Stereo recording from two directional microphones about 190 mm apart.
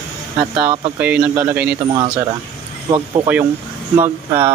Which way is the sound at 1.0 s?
10° right (ahead or behind).